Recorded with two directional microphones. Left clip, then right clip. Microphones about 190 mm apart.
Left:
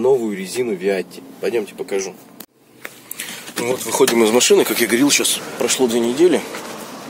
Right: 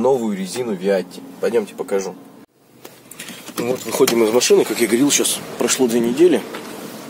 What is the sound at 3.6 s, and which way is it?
Speech, 30° right (ahead or behind).